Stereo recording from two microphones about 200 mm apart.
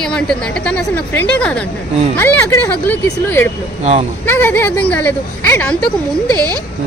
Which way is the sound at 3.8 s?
30° right (ahead or behind).